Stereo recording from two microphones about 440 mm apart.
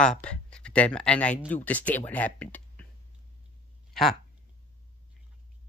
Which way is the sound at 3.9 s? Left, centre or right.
Centre.